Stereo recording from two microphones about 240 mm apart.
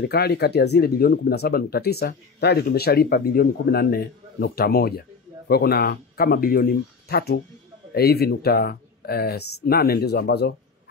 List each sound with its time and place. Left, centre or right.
0.0 s speech: left